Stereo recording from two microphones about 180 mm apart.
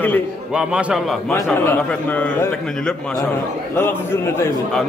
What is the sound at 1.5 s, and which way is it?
A man's voice, 10° left (ahead or behind).